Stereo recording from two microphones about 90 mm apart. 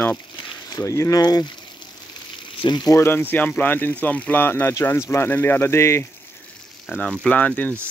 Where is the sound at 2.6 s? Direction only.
55° left (ahead or behind).